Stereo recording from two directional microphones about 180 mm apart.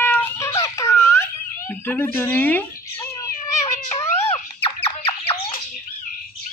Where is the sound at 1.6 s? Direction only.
10° left (ahead or behind).